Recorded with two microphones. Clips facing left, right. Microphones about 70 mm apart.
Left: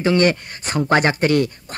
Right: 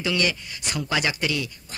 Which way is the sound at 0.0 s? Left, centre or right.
Left.